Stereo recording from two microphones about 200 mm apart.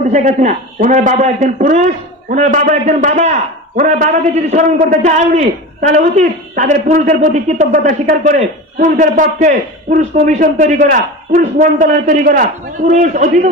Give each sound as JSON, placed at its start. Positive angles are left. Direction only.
{"t": 0.1, "sound": "a man's voice", "side_deg": -35}